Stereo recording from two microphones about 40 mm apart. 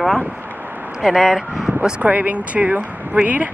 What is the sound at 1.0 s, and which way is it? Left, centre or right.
Speech, centre.